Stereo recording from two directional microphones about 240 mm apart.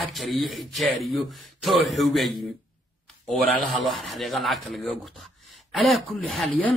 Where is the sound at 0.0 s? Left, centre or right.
Centre.